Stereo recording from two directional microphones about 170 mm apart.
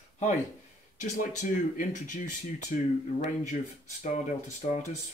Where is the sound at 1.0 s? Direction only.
45° left (ahead or behind).